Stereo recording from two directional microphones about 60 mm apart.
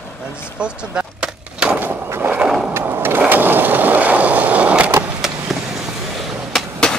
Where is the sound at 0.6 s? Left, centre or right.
Centre.